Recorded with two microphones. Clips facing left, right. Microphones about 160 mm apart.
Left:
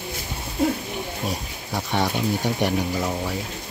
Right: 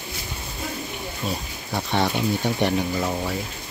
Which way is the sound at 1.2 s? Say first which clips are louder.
Even; 10° left (ahead or behind).